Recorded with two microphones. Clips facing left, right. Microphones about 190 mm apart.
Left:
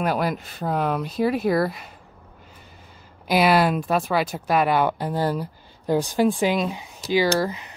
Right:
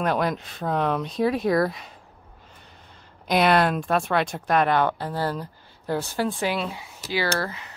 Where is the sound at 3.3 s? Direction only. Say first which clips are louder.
Left 1 dB; 5° left (ahead or behind).